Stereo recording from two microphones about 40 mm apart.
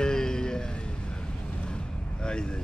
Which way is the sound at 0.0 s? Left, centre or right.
Centre.